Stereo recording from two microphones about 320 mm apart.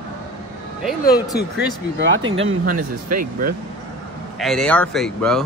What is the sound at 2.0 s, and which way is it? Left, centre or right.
Speech, right.